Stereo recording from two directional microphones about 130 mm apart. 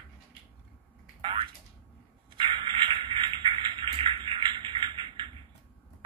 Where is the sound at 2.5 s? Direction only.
40° right (ahead or behind).